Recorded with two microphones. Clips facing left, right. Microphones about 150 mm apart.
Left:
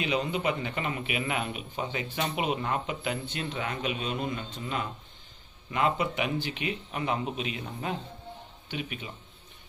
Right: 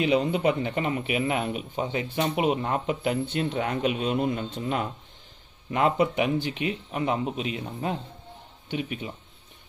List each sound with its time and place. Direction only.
0.0 s speech: 45° right (ahead or behind)
6.4 s speech: 30° right (ahead or behind)